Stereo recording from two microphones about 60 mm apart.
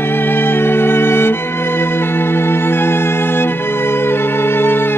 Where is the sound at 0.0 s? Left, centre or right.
Left.